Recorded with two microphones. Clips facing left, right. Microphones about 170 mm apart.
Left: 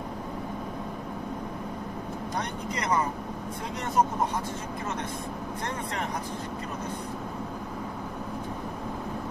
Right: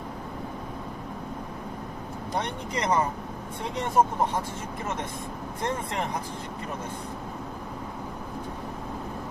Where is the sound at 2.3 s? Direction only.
25° right (ahead or behind).